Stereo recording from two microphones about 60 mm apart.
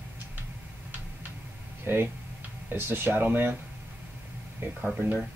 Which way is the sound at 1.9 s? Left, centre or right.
Right.